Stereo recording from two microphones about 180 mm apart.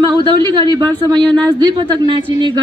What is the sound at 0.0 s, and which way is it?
Speech, 25° right (ahead or behind).